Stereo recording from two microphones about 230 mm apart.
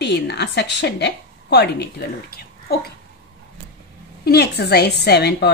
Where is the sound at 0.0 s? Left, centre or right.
Left.